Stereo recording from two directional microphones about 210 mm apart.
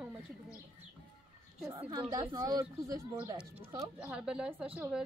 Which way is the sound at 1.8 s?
20° right (ahead or behind).